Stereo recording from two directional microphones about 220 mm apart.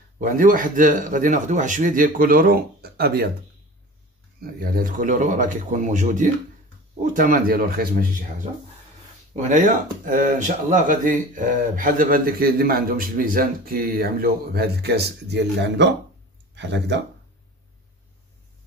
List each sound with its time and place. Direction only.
0.2 s speech: 35° right (ahead or behind)
4.4 s speech: 40° right (ahead or behind)